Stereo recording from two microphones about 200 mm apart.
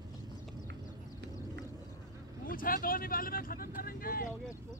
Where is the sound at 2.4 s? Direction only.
45° left (ahead or behind).